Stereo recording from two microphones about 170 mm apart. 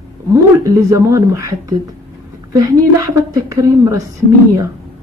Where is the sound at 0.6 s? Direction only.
20° right (ahead or behind).